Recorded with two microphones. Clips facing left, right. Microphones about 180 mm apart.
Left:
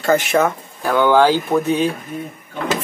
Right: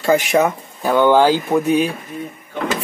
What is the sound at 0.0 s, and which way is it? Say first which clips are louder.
Speech: right 1 dB; 10° right (ahead or behind).